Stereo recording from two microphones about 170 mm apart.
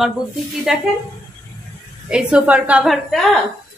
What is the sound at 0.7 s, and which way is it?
Speech, 5° right (ahead or behind).